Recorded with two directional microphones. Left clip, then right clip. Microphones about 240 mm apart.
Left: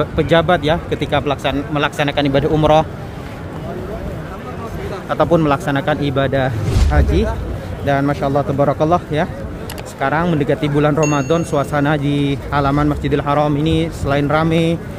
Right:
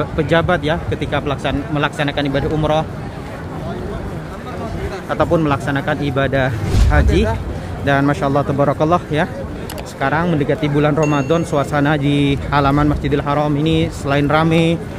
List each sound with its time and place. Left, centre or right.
0.0 s speech: centre
5.1 s speech: centre